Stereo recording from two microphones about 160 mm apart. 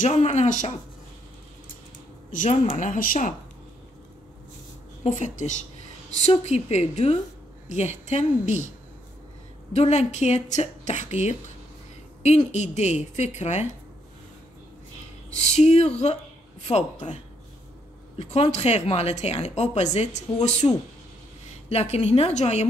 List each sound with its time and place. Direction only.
0.0 s speech: 45° left (ahead or behind)
2.3 s speech: 50° left (ahead or behind)
5.0 s speech: 45° left (ahead or behind)
9.7 s speech: 45° left (ahead or behind)
15.3 s speech: 45° left (ahead or behind)
16.7 s speech: 30° left (ahead or behind)
18.1 s a woman's voice: 40° left (ahead or behind)